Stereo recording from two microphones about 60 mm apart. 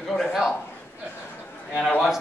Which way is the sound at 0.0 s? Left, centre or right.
Centre.